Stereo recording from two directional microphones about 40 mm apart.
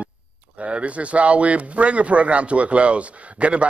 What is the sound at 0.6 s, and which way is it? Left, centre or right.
Speech, right.